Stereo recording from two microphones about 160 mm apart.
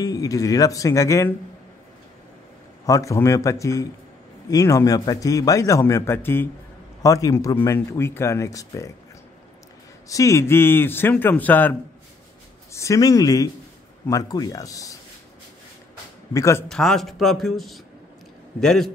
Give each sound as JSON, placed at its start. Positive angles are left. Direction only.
{"t": 0.0, "sound": "a man's voice", "side_deg": 20}
{"t": 2.9, "sound": "a man's voice", "side_deg": 20}
{"t": 10.0, "sound": "speech", "side_deg": 20}
{"t": 12.7, "sound": "a man's voice", "side_deg": 20}
{"t": 16.3, "sound": "a man's voice", "side_deg": 20}
{"t": 16.6, "sound": "speech", "side_deg": 5}